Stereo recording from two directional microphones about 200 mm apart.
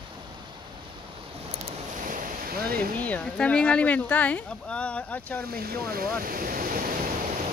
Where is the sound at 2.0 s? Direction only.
45° right (ahead or behind).